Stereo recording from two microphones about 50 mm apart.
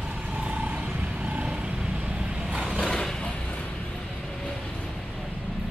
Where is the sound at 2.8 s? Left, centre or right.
Centre.